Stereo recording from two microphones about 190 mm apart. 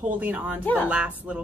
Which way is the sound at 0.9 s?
5° right (ahead or behind).